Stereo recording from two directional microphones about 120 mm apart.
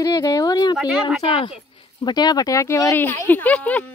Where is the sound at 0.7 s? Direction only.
5° right (ahead or behind).